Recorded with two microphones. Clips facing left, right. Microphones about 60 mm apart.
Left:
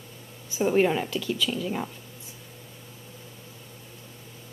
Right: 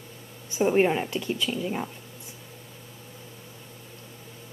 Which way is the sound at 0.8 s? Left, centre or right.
Right.